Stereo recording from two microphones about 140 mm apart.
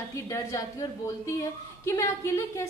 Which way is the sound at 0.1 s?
20° left (ahead or behind).